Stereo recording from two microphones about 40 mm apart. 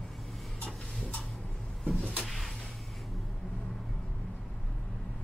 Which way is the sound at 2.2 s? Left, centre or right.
Centre.